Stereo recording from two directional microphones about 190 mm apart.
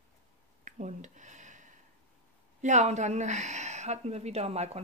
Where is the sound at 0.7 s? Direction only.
40° right (ahead or behind).